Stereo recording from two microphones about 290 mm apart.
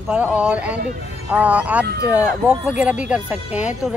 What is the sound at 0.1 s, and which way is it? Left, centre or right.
Speech, centre.